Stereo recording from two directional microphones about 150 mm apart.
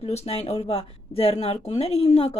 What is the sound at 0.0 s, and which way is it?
A woman's voice, 45° left (ahead or behind).